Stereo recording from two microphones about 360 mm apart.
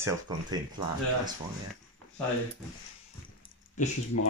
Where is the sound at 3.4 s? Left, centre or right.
Centre.